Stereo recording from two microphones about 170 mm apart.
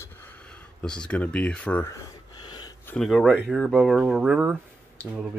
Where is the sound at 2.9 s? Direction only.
Centre (ahead or behind).